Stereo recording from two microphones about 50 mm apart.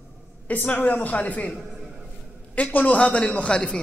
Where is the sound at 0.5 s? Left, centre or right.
Left.